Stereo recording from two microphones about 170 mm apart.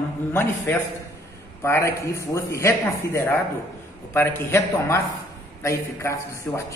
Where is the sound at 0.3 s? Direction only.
15° left (ahead or behind).